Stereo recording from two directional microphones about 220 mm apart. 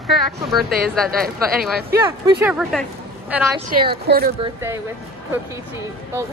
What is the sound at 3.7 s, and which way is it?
Speech, 45° right (ahead or behind).